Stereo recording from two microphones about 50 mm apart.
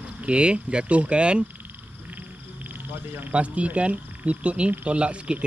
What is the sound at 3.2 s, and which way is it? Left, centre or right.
Speech, right.